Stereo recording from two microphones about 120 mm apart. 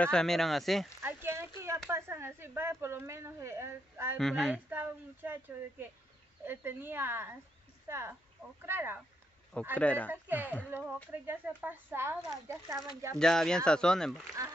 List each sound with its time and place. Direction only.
0.0 s speech: 5° left (ahead or behind)
1.0 s a sound: 20° right (ahead or behind)
1.9 s speech: 20° right (ahead or behind)
4.2 s speech: 5° left (ahead or behind)
4.6 s a woman's voice: 15° right (ahead or behind)
9.8 s speech: 10° left (ahead or behind)
10.2 s a woman's voice: 15° right (ahead or behind)
13.2 s speech: 5° left (ahead or behind)